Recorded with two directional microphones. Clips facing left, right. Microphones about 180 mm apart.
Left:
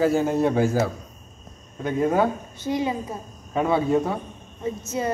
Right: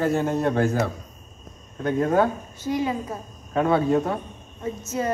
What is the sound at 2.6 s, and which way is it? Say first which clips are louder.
Female singing: even; 20° left (ahead or behind).